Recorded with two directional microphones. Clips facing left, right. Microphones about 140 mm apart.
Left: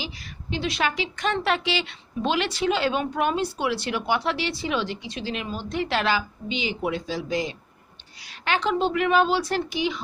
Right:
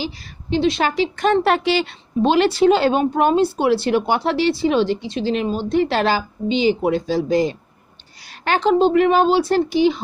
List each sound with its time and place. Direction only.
0.0 s speech: 30° right (ahead or behind)
1.1 s speech: 45° right (ahead or behind)
2.2 s speech: 35° right (ahead or behind)